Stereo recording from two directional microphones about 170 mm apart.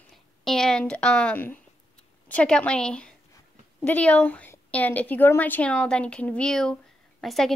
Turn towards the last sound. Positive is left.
turn(degrees=0)  # may be behind; listen again after turning